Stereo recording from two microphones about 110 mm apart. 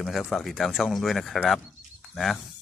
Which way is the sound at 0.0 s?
5° left (ahead or behind).